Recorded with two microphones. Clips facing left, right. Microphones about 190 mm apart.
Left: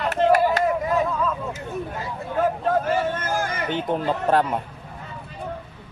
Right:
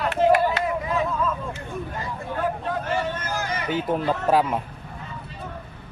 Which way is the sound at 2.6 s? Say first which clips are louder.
Left 5 dB; 45° left (ahead or behind).